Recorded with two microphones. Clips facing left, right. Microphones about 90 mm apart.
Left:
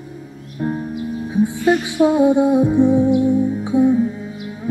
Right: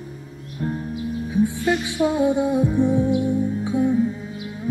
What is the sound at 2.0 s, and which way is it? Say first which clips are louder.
Music: left 6 dB; 25° left (ahead or behind).